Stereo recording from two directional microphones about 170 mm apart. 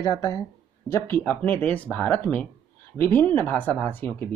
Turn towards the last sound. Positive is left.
turn(degrees=10)  # may be behind; listen again after turning